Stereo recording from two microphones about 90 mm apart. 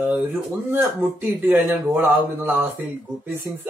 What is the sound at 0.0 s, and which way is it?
Speech, 25° right (ahead or behind).